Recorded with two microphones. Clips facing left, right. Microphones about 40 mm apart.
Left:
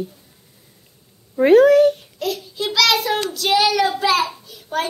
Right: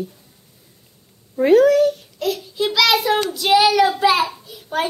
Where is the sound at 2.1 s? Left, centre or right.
Centre.